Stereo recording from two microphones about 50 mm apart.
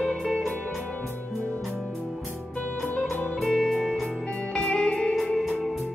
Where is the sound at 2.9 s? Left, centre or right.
Left.